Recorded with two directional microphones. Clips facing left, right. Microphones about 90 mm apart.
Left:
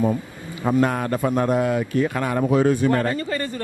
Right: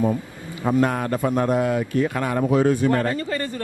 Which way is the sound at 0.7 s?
20° left (ahead or behind).